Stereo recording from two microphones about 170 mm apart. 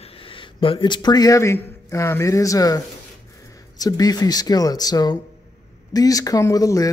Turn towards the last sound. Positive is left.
turn(degrees=20)  # may be behind; listen again after turning